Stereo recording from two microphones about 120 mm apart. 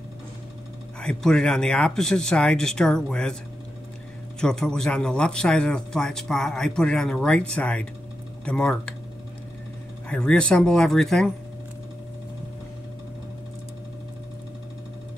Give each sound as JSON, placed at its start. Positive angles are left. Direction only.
{"t": 1.0, "sound": "speech", "side_deg": 5}
{"t": 4.4, "sound": "a man's voice", "side_deg": 5}
{"t": 10.0, "sound": "speech", "side_deg": 10}